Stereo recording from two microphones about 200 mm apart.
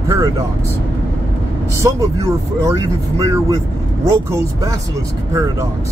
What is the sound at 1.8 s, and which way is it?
Speech, 15° right (ahead or behind).